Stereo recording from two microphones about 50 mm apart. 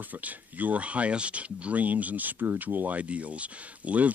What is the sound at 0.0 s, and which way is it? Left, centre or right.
Speech, right.